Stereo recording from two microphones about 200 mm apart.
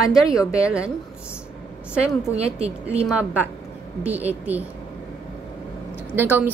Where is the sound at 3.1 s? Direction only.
5° right (ahead or behind).